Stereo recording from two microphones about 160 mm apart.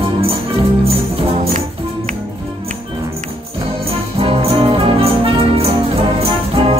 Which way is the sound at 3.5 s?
35° right (ahead or behind).